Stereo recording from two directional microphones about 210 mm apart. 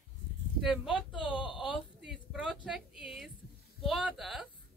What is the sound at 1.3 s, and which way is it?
Speech, 25° left (ahead or behind).